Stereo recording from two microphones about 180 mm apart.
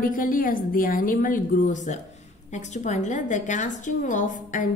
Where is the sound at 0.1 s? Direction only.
50° left (ahead or behind).